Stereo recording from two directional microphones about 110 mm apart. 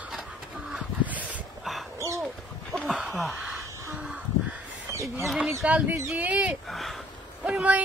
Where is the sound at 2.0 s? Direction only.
25° right (ahead or behind).